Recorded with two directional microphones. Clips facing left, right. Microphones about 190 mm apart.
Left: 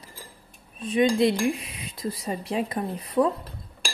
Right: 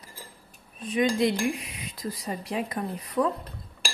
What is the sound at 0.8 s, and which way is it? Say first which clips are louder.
Speech: left 3 dB; 25° left (ahead or behind).